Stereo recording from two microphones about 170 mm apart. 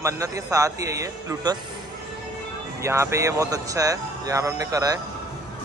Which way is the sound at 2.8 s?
15° right (ahead or behind).